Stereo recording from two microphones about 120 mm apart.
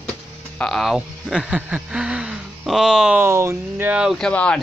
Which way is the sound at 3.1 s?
20° right (ahead or behind).